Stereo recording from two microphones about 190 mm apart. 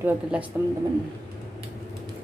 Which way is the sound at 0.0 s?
10° right (ahead or behind).